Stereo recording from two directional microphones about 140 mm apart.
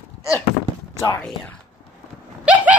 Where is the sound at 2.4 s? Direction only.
10° right (ahead or behind).